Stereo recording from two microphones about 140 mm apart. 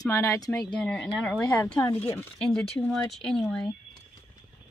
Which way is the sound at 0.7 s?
5° left (ahead or behind).